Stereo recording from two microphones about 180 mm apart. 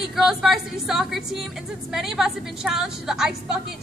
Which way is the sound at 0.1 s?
Centre (ahead or behind).